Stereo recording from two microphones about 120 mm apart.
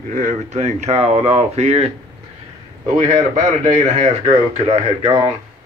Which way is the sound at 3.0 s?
90° right.